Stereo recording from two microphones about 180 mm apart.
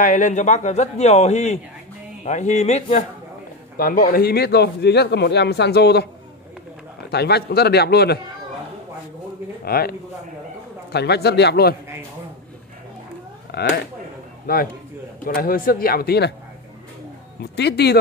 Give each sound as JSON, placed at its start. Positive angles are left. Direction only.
{"t": 0.0, "sound": "a man's voice", "side_deg": 45}
{"t": 3.7, "sound": "a man's voice", "side_deg": 50}
{"t": 7.1, "sound": "speech", "side_deg": 65}
{"t": 9.7, "sound": "speech", "side_deg": 55}
{"t": 13.5, "sound": "a man's voice", "side_deg": 65}
{"t": 17.4, "sound": "a man's voice", "side_deg": 70}